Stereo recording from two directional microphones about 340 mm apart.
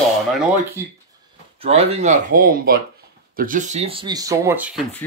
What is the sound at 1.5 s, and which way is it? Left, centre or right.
Speech, centre.